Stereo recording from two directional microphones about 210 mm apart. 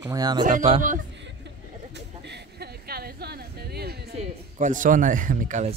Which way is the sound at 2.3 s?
50° right (ahead or behind).